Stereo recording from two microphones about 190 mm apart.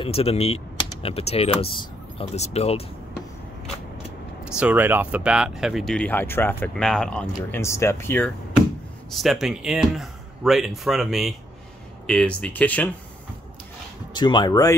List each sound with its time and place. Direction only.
0.0 s speech: 30° left (ahead or behind)
4.5 s speech: 5° right (ahead or behind); by 8.3 s 10° left (ahead or behind)
9.1 s speech: centre (ahead or behind)
14.1 s speech: 25° left (ahead or behind)